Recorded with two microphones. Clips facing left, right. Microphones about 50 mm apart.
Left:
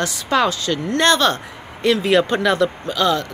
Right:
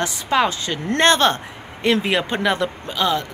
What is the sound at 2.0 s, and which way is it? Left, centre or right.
Speech, centre.